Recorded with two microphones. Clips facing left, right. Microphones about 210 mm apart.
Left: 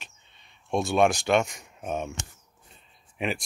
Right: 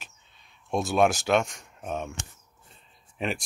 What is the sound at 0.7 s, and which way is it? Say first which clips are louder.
Speech: left 1 dB; centre (ahead or behind).